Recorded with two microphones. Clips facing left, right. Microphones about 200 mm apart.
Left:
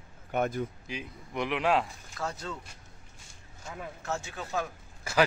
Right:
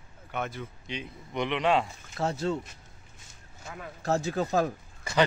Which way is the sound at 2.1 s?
25° right (ahead or behind).